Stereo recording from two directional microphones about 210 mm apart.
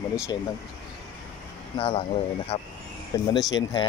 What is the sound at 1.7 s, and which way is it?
Speech, 25° left (ahead or behind).